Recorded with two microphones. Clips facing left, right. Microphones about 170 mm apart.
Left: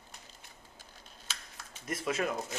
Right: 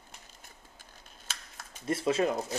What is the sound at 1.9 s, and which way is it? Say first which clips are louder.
Speech: right 6 dB; 30° right (ahead or behind).